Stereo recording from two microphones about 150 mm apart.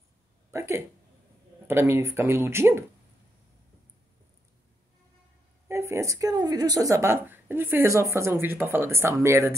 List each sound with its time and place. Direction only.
0.5 s speech: 20° right (ahead or behind)
5.7 s speech: 20° right (ahead or behind)